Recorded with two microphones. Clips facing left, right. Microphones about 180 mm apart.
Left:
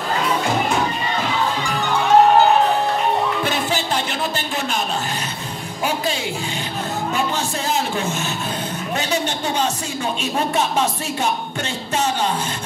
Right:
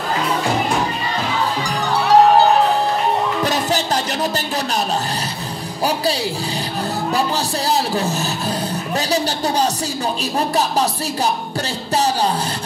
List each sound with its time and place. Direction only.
1.9 s music: 35° right (ahead or behind)
3.4 s music: 40° right (ahead or behind)
7.2 s speech: 35° right (ahead or behind)